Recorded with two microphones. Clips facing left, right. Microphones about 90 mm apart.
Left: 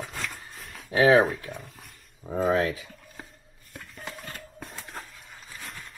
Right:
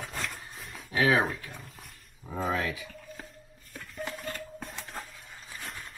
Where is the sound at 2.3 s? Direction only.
35° left (ahead or behind).